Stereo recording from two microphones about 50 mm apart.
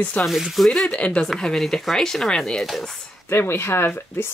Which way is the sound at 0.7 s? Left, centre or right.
Centre.